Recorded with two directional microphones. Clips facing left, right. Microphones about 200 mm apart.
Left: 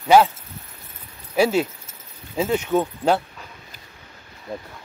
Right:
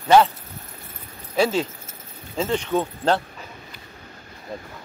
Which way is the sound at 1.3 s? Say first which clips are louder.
Left 2 dB; 10° left (ahead or behind).